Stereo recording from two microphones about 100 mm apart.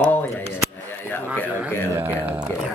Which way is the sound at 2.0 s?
20° right (ahead or behind).